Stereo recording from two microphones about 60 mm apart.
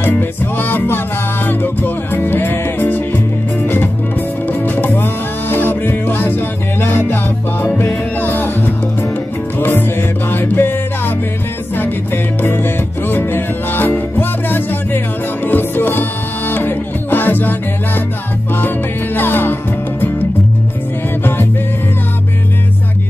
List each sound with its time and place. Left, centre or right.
0.0 s music: left
8.2 s music: left
19.1 s music: left
21.2 s music: left